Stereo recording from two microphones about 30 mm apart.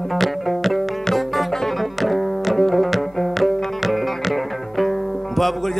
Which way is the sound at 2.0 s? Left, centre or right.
Centre.